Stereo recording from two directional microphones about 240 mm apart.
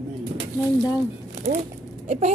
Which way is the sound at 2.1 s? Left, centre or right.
Right.